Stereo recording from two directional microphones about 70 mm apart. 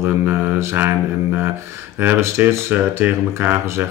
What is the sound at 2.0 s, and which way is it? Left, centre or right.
Speech, right.